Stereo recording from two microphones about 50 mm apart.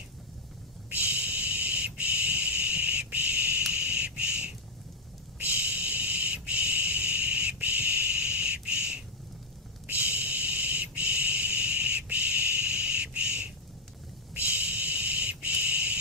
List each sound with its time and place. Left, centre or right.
0.8 s a sound: right
9.8 s owl: right
12.8 s bird: right
14.3 s owl: right